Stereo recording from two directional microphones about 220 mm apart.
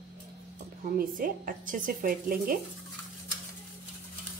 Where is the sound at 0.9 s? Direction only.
40° right (ahead or behind).